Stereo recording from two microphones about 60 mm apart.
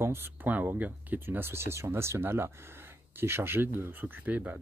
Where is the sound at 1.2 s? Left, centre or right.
Right.